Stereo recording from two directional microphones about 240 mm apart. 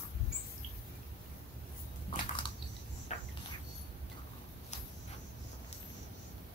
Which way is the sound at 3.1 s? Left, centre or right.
Left.